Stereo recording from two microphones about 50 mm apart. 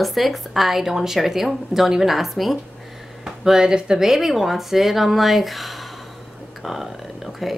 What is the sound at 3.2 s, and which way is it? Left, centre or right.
Speech, centre.